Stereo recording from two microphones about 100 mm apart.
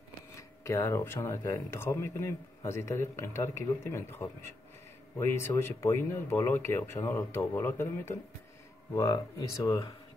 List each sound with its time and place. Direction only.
0.4 s speech: 30° left (ahead or behind)
8.9 s speech: 35° left (ahead or behind)